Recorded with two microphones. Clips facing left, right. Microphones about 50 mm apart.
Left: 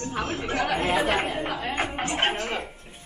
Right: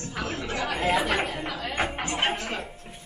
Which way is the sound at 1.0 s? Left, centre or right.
Left.